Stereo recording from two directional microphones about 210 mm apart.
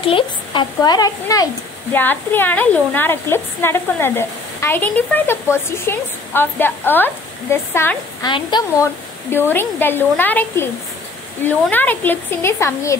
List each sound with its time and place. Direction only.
0.0 s speech: 25° left (ahead or behind)